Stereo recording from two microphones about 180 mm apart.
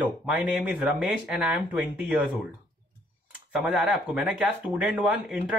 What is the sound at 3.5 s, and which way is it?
Speech, 5° right (ahead or behind).